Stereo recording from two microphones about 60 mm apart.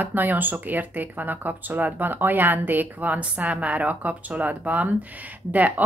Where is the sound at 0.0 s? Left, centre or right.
Right.